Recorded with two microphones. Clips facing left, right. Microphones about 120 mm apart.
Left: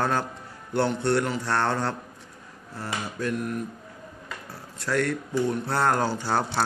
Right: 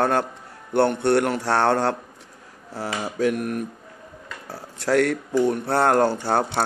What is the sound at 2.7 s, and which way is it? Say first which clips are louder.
Speech: right 5 dB; 85° right.